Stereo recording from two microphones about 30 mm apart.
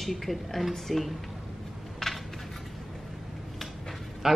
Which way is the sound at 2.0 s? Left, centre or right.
Centre.